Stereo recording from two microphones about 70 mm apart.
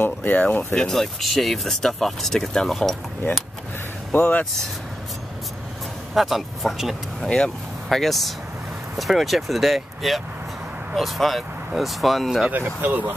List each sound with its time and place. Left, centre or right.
0.0 s speech: left
0.7 s speech: centre
4.1 s speech: left
6.1 s speech: centre
7.2 s speech: centre
12.4 s speech: right